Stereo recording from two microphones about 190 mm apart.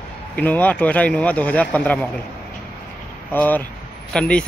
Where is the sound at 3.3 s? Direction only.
10° left (ahead or behind).